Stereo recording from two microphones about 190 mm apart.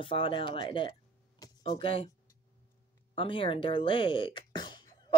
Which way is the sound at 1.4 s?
25° left (ahead or behind).